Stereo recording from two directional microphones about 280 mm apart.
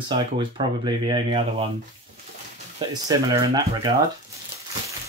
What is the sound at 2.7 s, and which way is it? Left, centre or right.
Speech, centre.